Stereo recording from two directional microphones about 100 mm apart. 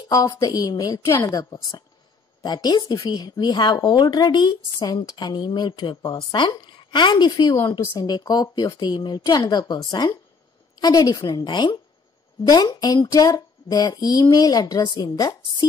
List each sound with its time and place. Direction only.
0.1 s a woman's voice: 35° left (ahead or behind)
11.2 s a woman's voice: 50° left (ahead or behind)